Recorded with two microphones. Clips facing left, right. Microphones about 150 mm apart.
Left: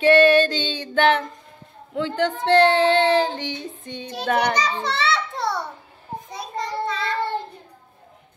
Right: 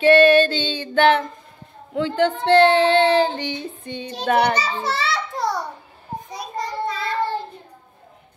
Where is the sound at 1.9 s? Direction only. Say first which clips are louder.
Right 3 dB; 10° right (ahead or behind).